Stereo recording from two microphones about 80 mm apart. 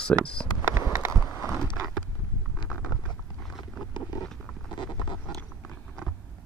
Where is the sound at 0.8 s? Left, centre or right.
Right.